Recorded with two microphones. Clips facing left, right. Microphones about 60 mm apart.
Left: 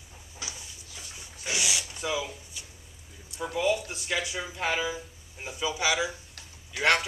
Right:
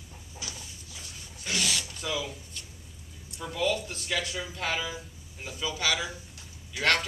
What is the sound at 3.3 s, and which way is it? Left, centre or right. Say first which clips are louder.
Speech: left 2 dB; centre.